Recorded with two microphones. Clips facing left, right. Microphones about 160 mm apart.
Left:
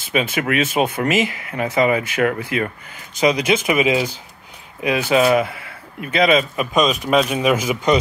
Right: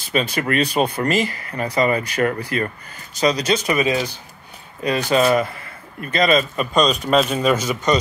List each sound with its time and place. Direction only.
0.1 s speech: 5° left (ahead or behind)
3.2 s speech: 20° left (ahead or behind)